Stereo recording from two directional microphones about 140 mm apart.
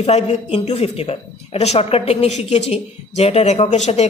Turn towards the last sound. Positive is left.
turn(degrees=50)  # may be behind; listen again after turning